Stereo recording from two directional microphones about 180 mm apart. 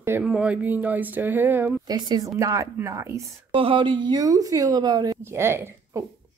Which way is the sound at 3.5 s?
30° right (ahead or behind).